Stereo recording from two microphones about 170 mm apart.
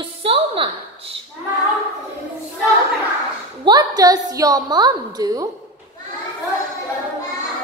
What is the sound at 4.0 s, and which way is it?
A woman's voice, 20° right (ahead or behind).